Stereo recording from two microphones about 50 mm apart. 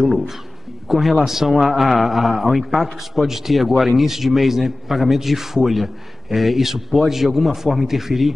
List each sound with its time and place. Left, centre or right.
0.8 s a man's voice: centre